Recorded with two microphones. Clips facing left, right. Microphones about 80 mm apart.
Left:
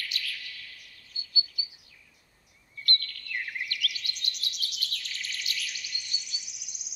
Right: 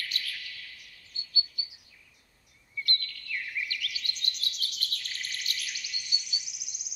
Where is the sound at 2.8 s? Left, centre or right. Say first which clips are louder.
Left 5 dB; left.